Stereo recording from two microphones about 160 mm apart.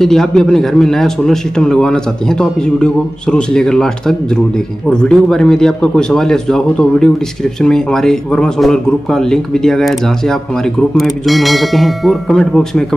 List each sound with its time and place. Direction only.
0.0 s speech: 5° left (ahead or behind)